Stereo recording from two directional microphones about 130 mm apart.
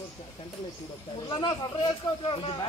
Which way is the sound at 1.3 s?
35° left (ahead or behind).